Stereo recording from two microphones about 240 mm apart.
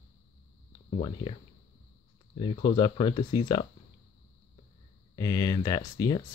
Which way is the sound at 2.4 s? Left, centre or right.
Centre.